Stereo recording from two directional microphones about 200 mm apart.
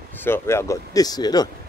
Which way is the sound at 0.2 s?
10° left (ahead or behind).